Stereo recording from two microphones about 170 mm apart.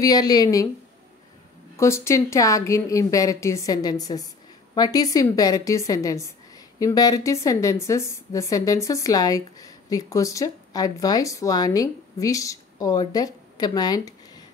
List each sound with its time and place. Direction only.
0.0 s a woman's voice: 20° left (ahead or behind)
1.8 s a woman's voice: 15° left (ahead or behind)